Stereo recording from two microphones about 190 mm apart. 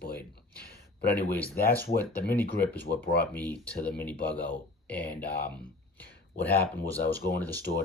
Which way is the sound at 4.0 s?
10° left (ahead or behind).